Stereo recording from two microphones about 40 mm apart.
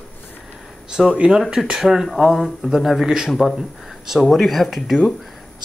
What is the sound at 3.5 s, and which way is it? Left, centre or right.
Speech, centre.